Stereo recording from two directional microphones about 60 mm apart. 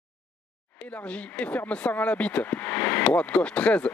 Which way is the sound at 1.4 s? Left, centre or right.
Left.